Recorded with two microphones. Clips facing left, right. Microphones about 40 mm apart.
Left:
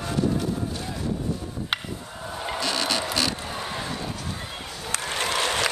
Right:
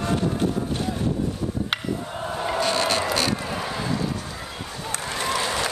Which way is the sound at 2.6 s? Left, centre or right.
Right.